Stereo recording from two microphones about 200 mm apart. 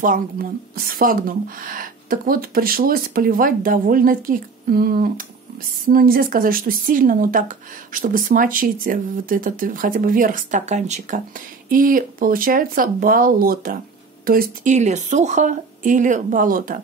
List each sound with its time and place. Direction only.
0.0 s a woman's voice: 45° right (ahead or behind)